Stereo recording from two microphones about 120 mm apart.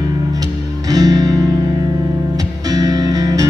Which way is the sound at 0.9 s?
30° right (ahead or behind).